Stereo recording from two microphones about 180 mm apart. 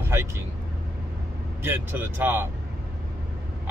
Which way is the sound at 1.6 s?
10° right (ahead or behind).